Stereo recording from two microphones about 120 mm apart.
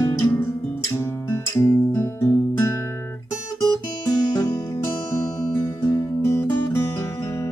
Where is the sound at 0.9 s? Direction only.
25° left (ahead or behind).